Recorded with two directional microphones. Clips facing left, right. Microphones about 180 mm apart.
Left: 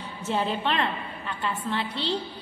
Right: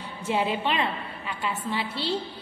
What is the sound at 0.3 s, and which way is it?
A woman's voice, 10° right (ahead or behind).